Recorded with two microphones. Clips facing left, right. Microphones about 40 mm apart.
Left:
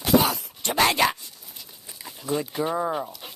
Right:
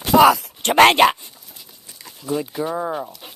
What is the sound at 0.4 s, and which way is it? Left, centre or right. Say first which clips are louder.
Speech: right 10 dB; right.